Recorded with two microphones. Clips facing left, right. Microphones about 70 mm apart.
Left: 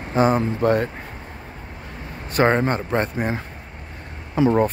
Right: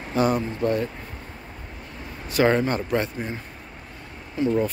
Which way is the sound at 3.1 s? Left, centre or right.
Left.